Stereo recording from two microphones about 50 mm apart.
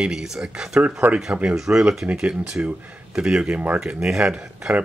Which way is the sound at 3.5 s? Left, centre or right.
Right.